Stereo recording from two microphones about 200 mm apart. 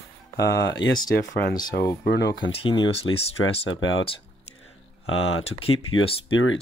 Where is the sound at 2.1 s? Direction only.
60° left (ahead or behind).